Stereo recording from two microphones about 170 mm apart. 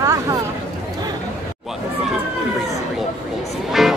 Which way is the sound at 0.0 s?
20° right (ahead or behind).